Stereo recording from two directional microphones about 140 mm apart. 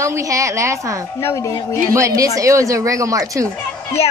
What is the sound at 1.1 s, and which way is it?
Speech, 20° left (ahead or behind).